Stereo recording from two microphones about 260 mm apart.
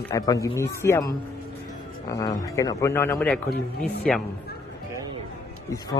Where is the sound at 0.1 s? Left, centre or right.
Centre.